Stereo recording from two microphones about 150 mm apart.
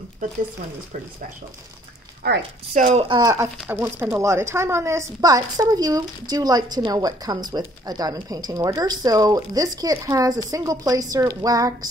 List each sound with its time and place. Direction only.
2.2 s speech: 75° right (ahead or behind)
2.9 s speech: 40° right (ahead or behind)
3.2 s speech: 25° right (ahead or behind)
3.6 s speech: 15° right (ahead or behind)